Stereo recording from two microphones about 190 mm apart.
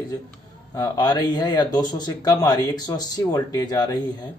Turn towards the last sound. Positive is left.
turn(degrees=20)  # may be behind; listen again after turning